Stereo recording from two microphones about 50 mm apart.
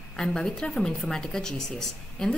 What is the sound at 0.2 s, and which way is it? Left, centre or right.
Speech, centre.